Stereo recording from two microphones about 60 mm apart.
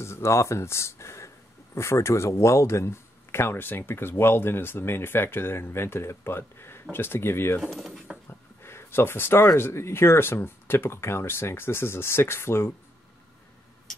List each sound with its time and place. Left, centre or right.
0.0 s speech: left
7.7 s speech: centre
8.3 s a sound: left
9.6 s speech: left